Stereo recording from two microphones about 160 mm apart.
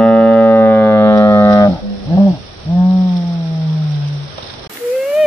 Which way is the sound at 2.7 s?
15° left (ahead or behind).